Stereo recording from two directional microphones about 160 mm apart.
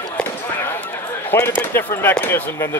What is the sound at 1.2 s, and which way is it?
Speech, 15° left (ahead or behind).